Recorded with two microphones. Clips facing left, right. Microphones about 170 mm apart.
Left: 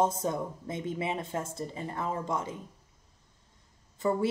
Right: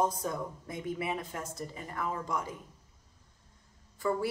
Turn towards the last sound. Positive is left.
turn(degrees=20)  # may be behind; listen again after turning